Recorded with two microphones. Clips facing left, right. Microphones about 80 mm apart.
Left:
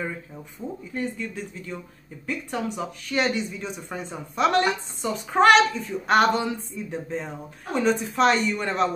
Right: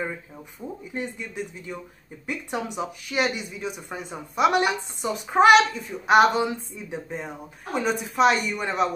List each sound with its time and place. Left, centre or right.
0.6 s speech: centre